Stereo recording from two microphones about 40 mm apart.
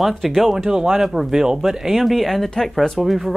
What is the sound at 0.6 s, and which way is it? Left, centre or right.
Speech, centre.